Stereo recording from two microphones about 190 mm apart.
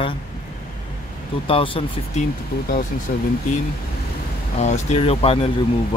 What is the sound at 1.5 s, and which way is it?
Speech, 30° left (ahead or behind).